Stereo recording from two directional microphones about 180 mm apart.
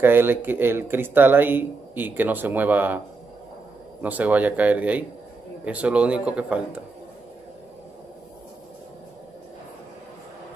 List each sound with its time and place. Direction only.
0.0 s speech: 10° right (ahead or behind)
4.0 s speech: 10° right (ahead or behind)